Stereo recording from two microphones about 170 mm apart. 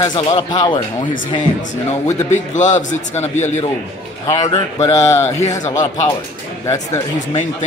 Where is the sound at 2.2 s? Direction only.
45° left (ahead or behind).